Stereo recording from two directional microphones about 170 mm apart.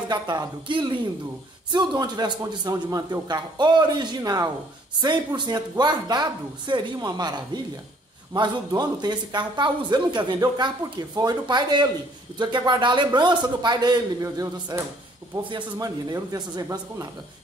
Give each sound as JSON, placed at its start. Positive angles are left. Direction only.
{"t": 0.1, "sound": "speech", "side_deg": -25}